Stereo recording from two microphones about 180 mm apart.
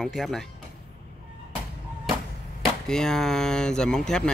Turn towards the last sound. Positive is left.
turn(degrees=5)  # may be behind; listen again after turning